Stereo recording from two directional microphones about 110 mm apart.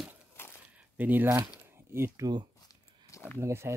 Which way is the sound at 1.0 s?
15° right (ahead or behind).